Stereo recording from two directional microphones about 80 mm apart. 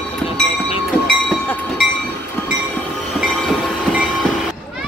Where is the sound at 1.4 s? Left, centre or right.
Left.